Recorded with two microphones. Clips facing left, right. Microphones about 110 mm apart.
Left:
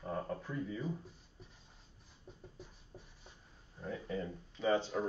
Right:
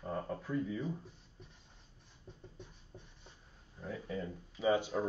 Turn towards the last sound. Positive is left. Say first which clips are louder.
# right 1 dB
turn(degrees=-10)  # may be behind; listen again after turning